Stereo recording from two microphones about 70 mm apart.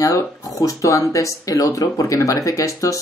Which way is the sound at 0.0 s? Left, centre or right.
Left.